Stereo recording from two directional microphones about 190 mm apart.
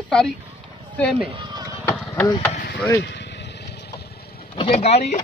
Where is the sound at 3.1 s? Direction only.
65° left (ahead or behind).